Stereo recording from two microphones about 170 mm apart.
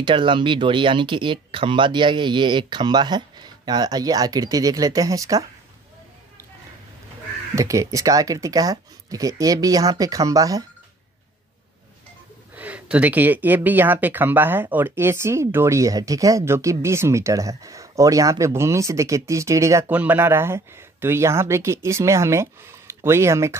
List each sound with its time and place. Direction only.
0.0 s speech: 30° right (ahead or behind)
7.5 s speech: 20° right (ahead or behind)
12.5 s speech: 10° right (ahead or behind)